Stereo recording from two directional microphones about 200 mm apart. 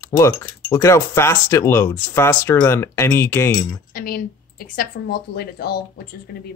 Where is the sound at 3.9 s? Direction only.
50° left (ahead or behind).